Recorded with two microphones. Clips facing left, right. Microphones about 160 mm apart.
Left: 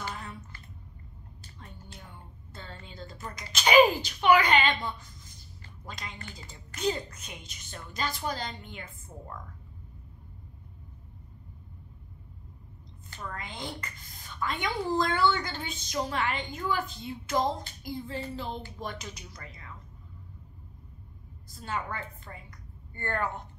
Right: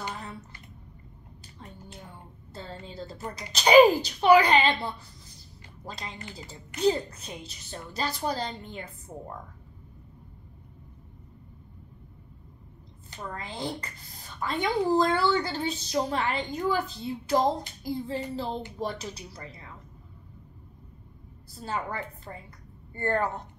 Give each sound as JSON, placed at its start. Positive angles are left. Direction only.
{"t": 2.5, "sound": "a woman's voice", "side_deg": -35}
{"t": 13.2, "sound": "a woman's voice", "side_deg": -35}
{"t": 21.5, "sound": "a woman's voice", "side_deg": -35}